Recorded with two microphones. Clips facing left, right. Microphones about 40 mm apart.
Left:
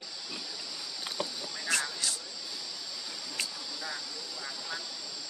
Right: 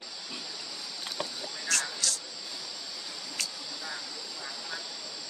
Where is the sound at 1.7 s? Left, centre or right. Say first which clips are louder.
Even; centre.